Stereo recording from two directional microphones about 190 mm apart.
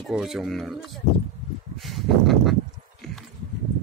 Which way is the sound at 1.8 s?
Centre (ahead or behind).